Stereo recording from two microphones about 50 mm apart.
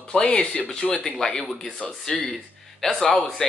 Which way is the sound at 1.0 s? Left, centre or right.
Centre.